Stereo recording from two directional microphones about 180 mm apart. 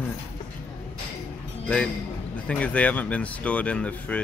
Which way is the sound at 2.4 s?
5° left (ahead or behind).